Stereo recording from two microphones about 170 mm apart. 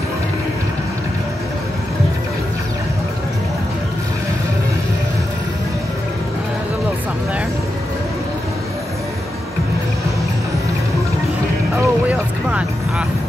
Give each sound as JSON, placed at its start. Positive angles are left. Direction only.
{"t": 11.7, "sound": "vehicle", "side_deg": -10}